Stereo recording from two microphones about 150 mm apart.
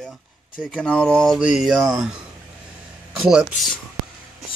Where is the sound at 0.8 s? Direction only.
5° left (ahead or behind).